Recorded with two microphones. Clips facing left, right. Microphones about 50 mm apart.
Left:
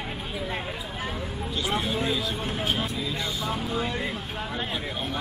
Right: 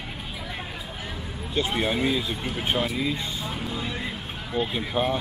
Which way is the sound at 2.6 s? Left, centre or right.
Right.